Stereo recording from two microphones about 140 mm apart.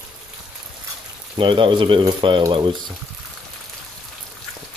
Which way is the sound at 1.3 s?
35° right (ahead or behind).